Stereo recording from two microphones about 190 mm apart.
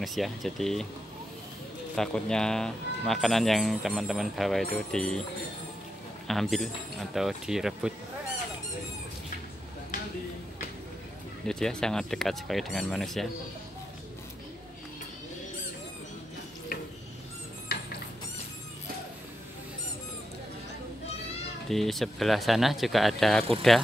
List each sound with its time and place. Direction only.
0.0 s speech: centre (ahead or behind)
2.0 s speech: 5° left (ahead or behind)
6.2 s speech: centre (ahead or behind)
11.4 s speech: 5° left (ahead or behind)
17.7 s rodents: 50° left (ahead or behind)
21.6 s speech: centre (ahead or behind)